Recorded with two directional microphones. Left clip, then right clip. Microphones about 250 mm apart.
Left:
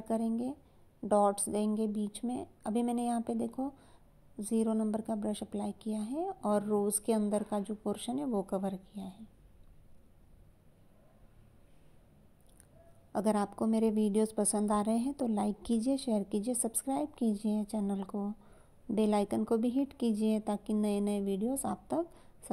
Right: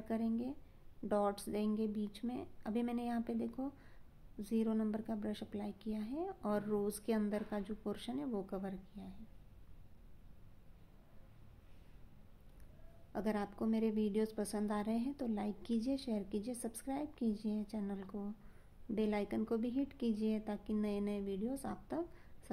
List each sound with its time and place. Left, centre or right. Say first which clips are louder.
0.1 s a woman's voice: left 6 dB; centre
13.1 s a woman's voice: left 8 dB; centre